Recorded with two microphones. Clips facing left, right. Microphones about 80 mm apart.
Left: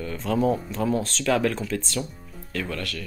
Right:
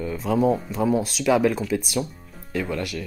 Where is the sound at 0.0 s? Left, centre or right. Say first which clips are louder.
Right 2 dB; centre.